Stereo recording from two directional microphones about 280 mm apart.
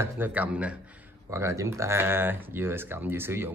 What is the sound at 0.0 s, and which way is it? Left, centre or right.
Speech, centre.